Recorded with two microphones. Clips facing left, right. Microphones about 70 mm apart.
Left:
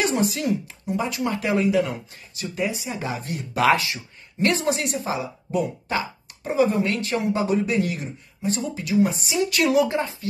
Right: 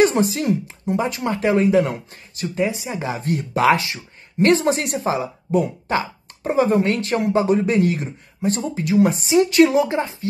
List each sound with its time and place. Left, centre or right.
0.0 s speech: right
5.0 s speech: right
5.9 s a sound: right
6.7 s a man's voice: right
9.5 s a woman's voice: right